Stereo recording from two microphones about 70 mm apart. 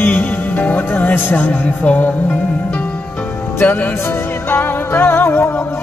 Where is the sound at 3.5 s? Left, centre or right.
Left.